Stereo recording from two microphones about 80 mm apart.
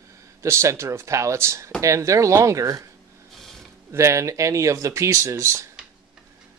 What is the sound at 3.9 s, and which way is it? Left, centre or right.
Speech, right.